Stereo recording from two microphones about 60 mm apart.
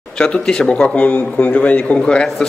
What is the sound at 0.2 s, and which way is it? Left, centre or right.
A man's voice, centre.